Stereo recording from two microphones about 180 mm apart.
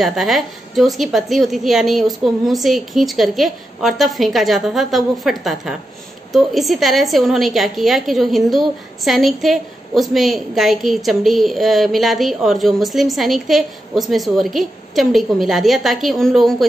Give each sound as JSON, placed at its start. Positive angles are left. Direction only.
{"t": 0.0, "sound": "a woman's voice", "side_deg": 0}